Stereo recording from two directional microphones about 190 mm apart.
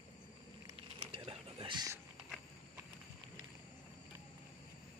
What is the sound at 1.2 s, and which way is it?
Whispering, 25° right (ahead or behind).